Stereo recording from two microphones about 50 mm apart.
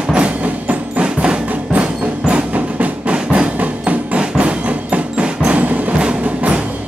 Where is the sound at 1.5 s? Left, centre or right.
Right.